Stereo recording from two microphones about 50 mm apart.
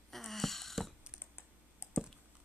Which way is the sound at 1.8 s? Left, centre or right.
Left.